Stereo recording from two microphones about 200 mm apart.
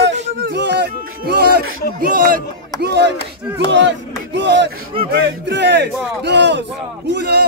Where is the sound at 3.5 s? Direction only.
60° right (ahead or behind).